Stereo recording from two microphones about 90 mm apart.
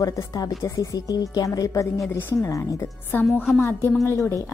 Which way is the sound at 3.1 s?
25° left (ahead or behind).